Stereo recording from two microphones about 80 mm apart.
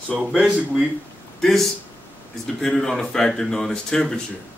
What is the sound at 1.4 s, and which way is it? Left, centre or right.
Speech, centre.